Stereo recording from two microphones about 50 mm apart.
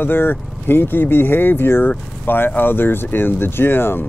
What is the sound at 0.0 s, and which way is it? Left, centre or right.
Speech, left.